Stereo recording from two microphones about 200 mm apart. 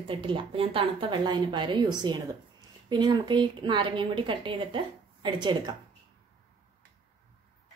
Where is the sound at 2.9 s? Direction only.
20° right (ahead or behind).